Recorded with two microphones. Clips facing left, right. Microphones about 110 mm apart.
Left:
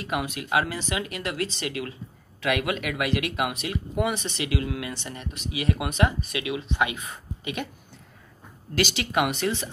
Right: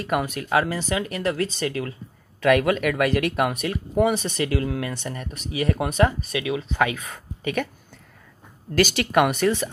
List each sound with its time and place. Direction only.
0.0 s speech: 45° right (ahead or behind)
8.7 s speech: 45° right (ahead or behind)